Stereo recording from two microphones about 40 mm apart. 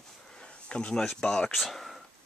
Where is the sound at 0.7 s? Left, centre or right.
Left.